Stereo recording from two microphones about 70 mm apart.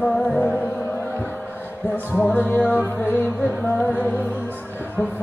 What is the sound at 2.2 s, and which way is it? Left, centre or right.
Music, left.